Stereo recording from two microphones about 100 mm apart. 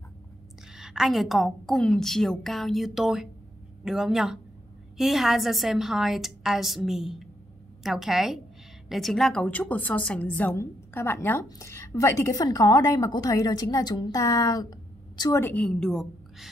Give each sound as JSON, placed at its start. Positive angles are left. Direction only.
{"t": 0.7, "sound": "a woman's voice", "side_deg": -5}
{"t": 15.4, "sound": "a woman's voice", "side_deg": 15}